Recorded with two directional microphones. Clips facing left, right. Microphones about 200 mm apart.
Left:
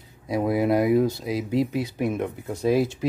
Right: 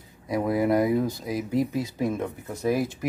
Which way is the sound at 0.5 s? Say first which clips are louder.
Even; 25° left (ahead or behind).